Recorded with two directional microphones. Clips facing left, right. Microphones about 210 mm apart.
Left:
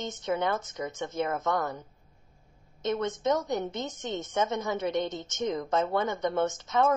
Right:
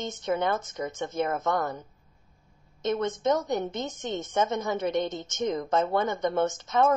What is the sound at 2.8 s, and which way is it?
A woman's voice, 50° right (ahead or behind).